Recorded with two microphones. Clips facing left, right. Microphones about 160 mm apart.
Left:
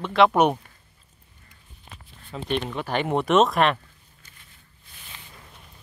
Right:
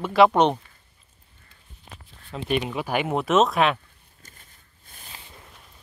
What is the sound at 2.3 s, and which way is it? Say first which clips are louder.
Speech: right 2 dB; 5° right (ahead or behind).